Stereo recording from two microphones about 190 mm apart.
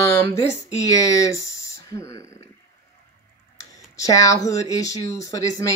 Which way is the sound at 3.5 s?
15° left (ahead or behind).